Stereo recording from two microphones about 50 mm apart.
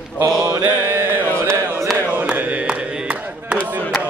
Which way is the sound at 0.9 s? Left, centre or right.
Right.